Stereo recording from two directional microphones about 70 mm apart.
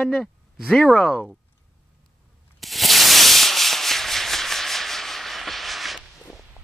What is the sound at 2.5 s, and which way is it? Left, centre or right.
Rub, centre.